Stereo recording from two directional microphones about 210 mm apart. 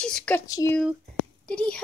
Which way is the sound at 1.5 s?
5° left (ahead or behind).